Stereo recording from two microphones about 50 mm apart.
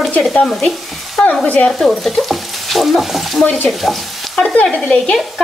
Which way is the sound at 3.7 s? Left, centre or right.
Centre.